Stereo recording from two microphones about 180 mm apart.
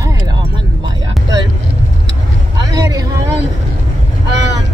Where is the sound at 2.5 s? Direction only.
20° right (ahead or behind).